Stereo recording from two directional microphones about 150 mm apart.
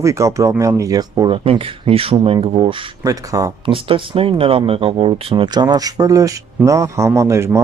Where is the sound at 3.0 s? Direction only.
25° right (ahead or behind).